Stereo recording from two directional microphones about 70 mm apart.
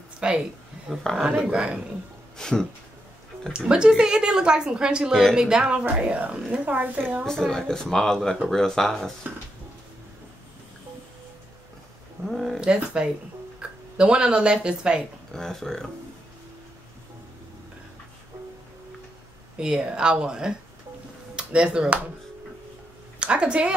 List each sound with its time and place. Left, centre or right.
0.2 s a sound: centre
1.4 s a woman's voice: centre
2.3 s speech: centre
3.5 s a woman's voice: centre
7.2 s speech: centre
12.3 s a sound: centre
12.5 s a woman's voice: centre
15.3 s speech: centre
19.5 s a woman's voice: centre
23.1 s a woman's voice: centre